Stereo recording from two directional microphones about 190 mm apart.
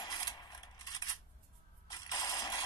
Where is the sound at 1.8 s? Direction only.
20° left (ahead or behind).